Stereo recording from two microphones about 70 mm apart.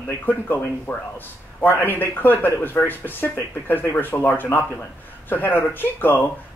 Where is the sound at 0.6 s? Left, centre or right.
Left.